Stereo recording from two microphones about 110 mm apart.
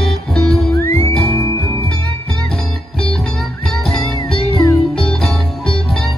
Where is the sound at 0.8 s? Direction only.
25° left (ahead or behind).